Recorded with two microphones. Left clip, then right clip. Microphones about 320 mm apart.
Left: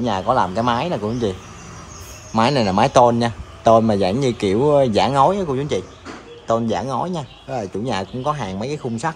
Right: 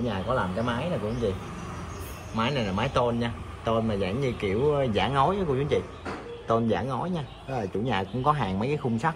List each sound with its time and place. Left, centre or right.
0.7 s a man's voice: centre
2.3 s a man's voice: centre